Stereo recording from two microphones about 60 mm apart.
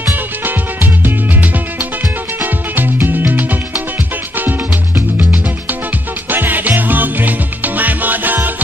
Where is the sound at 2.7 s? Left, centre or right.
Right.